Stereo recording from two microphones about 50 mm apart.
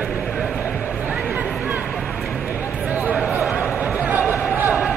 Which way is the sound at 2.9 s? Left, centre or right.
Right.